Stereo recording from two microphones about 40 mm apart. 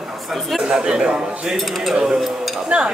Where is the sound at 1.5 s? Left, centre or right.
Centre.